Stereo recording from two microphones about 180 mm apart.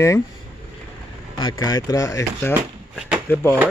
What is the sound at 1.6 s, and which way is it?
Speech, 20° left (ahead or behind).